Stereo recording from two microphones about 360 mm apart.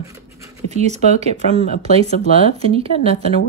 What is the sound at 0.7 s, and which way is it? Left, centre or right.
Speech, centre.